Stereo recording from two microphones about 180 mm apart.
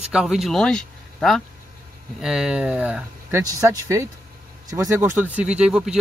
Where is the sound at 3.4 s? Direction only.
20° right (ahead or behind).